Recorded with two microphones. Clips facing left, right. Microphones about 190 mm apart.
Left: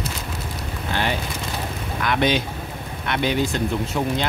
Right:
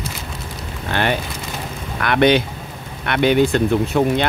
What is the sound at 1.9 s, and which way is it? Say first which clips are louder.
Speech: right 6 dB; 60° right (ahead or behind).